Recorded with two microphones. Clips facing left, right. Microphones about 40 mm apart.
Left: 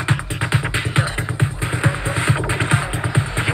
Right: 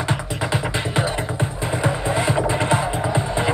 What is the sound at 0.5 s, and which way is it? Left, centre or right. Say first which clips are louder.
Music: left 2 dB; left.